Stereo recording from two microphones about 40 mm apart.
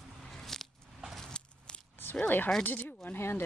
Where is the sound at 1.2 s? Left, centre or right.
Centre.